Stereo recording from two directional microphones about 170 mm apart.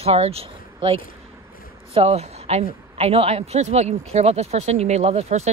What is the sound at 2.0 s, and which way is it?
Speech, 35° right (ahead or behind).